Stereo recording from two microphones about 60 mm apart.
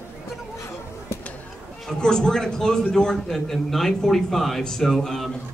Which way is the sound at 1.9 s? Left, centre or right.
Centre.